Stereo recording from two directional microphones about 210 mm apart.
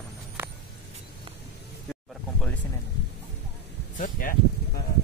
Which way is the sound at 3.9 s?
40° left (ahead or behind).